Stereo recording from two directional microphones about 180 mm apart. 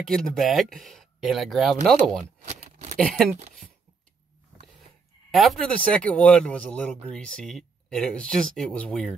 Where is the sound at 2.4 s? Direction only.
40° right (ahead or behind).